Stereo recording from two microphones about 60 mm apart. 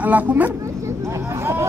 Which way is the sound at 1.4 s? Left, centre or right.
Right.